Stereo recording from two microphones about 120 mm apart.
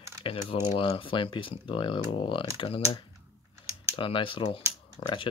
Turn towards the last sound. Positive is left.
turn(degrees=45)  # may be behind; listen again after turning